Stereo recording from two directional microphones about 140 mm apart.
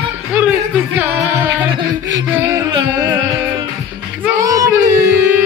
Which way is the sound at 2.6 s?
30° right (ahead or behind).